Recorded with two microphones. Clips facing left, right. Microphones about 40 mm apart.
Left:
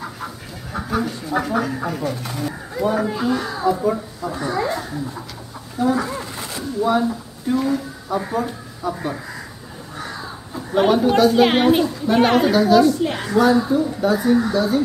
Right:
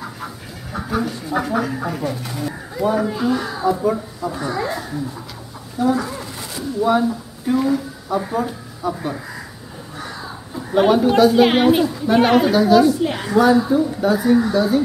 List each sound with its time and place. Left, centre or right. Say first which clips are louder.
0.7 s speech: even; centre
5.9 s a sound: left 1 dB; left
6.8 s speech: right 2 dB; centre
10.7 s speech: right 1 dB; centre